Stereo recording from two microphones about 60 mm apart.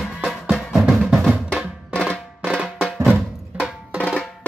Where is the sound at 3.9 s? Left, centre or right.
Centre.